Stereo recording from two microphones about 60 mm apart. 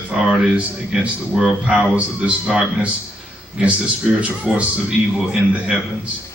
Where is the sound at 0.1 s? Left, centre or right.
Centre.